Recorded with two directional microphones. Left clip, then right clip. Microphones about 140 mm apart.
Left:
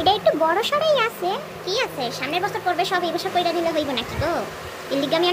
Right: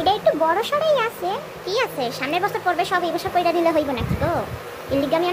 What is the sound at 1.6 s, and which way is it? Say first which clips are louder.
Speech: right 2 dB; 20° right (ahead or behind).